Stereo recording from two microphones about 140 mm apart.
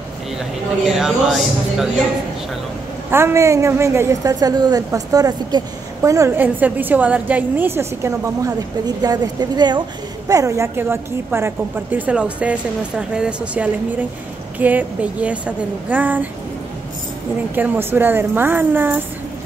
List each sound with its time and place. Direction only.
0.8 s speech: centre (ahead or behind)
3.1 s a woman's voice: 15° right (ahead or behind)
17.6 s a woman's voice: 15° right (ahead or behind)